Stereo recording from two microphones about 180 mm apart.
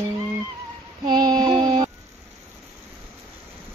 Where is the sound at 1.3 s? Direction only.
25° right (ahead or behind).